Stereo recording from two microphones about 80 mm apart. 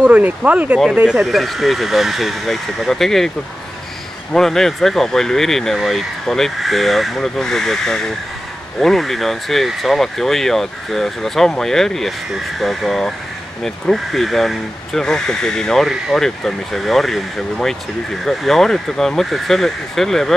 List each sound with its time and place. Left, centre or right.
0.0 s speech: centre
1.0 s speech: centre
4.3 s speech: centre